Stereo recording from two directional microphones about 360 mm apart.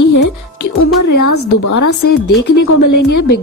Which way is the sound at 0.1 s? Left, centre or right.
Left.